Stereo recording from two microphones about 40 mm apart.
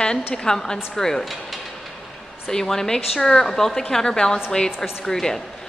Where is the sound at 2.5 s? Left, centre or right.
Centre.